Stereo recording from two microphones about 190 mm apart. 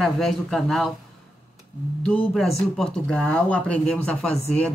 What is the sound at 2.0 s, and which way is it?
Speech, 5° left (ahead or behind).